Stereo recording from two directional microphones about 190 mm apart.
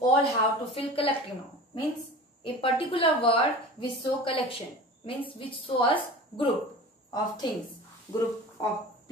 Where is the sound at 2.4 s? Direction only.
30° left (ahead or behind).